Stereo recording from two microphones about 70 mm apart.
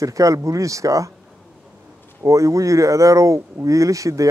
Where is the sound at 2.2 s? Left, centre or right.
Right.